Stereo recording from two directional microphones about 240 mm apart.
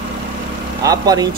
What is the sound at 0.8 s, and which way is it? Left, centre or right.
Speech, centre.